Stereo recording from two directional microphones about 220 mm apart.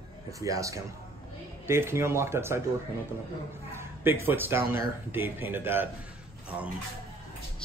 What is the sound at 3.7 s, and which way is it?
Speech, 10° right (ahead or behind).